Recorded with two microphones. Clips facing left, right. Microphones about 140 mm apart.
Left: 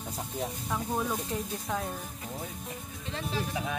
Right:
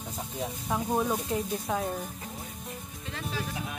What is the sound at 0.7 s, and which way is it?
Speech, 15° right (ahead or behind).